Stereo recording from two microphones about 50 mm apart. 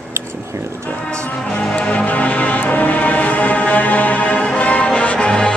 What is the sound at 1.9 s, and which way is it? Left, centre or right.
Music, left.